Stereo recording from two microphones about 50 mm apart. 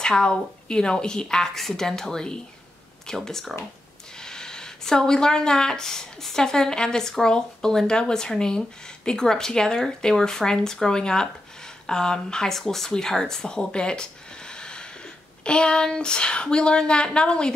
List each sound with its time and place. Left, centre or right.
0.0 s speech: centre